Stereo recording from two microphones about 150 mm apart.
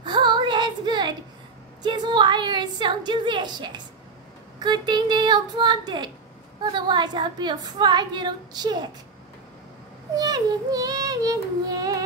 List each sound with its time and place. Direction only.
0.0 s female singing: 30° right (ahead or behind)
1.8 s a woman's voice: 30° right (ahead or behind)
10.1 s a woman's voice: 25° right (ahead or behind)